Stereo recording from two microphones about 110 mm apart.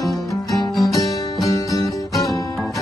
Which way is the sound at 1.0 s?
30° left (ahead or behind).